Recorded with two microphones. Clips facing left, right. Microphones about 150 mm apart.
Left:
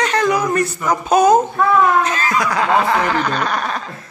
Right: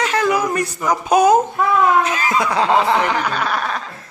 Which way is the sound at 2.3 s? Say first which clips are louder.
Right 1 dB; 25° right (ahead or behind).